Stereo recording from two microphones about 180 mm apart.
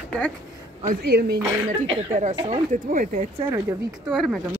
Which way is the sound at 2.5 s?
45° right (ahead or behind).